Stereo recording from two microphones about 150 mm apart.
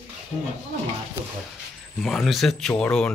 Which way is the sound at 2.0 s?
Centre (ahead or behind).